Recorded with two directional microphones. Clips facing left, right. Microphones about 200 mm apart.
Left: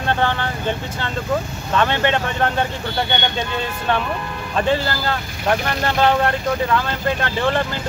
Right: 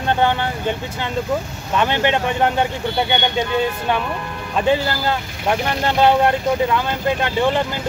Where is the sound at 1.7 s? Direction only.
15° right (ahead or behind).